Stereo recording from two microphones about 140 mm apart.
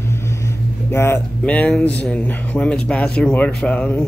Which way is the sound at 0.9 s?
15° left (ahead or behind).